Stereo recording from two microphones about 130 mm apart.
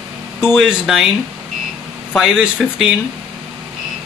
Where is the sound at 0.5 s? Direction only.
5° right (ahead or behind).